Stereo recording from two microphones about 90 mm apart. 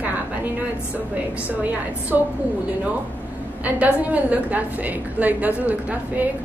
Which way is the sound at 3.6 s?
15° right (ahead or behind).